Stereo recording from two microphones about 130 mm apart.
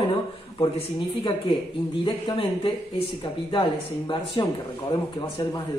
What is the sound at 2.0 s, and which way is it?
Speech, 40° left (ahead or behind).